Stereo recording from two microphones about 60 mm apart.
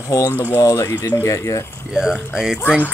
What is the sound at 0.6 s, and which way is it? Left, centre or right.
Speech, left.